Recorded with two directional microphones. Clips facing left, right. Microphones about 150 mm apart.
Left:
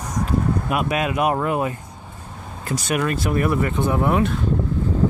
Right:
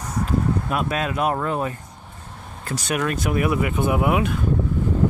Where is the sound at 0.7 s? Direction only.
10° left (ahead or behind); by 4.3 s 10° right (ahead or behind).